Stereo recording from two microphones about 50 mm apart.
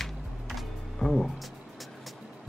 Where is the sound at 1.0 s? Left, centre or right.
Centre.